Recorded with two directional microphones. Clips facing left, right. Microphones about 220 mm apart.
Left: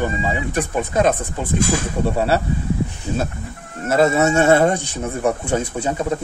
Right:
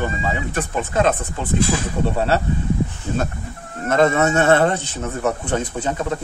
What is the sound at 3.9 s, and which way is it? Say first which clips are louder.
A man's voice: left 1 dB; 10° left (ahead or behind).